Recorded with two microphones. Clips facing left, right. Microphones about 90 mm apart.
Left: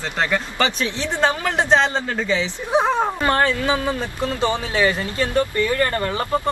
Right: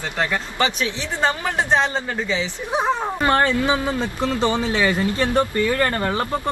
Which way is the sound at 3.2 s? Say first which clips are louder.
Right 1 dB; 25° right (ahead or behind).